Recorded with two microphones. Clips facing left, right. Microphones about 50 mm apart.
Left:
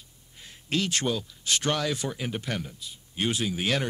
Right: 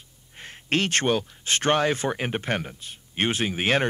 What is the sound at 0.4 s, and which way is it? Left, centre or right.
Speech, right.